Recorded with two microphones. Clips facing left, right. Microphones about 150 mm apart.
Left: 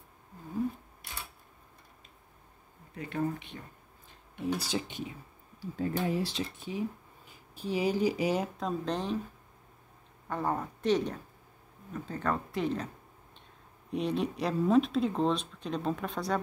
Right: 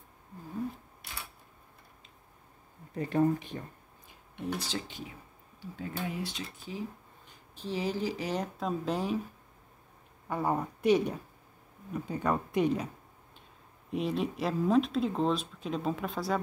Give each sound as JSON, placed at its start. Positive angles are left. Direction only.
{"t": 2.9, "sound": "speech", "side_deg": -40}
{"t": 4.5, "sound": "speech", "side_deg": 10}
{"t": 5.8, "sound": "speech", "side_deg": 35}
{"t": 7.2, "sound": "speech", "side_deg": 10}
{"t": 8.5, "sound": "speech", "side_deg": -5}
{"t": 10.2, "sound": "speech", "side_deg": -10}
{"t": 13.8, "sound": "speech", "side_deg": 0}